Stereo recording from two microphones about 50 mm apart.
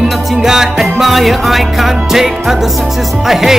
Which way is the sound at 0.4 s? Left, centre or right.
Centre.